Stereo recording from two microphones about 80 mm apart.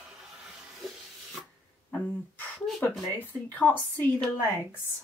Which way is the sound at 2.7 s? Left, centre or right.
Centre.